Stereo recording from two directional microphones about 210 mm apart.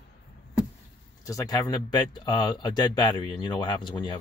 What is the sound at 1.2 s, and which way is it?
Speech, 15° left (ahead or behind).